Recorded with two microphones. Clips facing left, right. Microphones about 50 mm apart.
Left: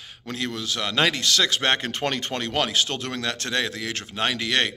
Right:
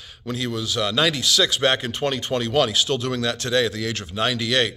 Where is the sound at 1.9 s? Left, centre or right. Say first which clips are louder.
Right 2 dB; left.